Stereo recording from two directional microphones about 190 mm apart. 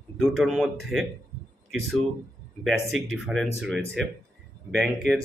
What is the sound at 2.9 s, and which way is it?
Speech, centre (ahead or behind).